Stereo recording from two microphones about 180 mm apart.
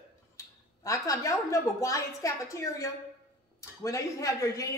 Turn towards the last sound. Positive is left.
turn(degrees=20)  # may be behind; listen again after turning